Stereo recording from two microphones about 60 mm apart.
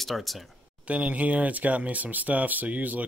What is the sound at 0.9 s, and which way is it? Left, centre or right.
Speech, right.